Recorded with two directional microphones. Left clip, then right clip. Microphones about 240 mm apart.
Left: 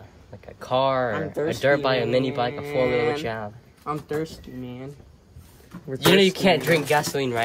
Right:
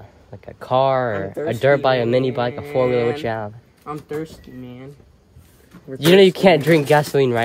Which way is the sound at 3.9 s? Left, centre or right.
Centre.